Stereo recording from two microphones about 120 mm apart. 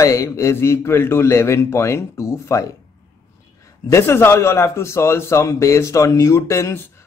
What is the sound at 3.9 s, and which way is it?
Speech, 20° left (ahead or behind).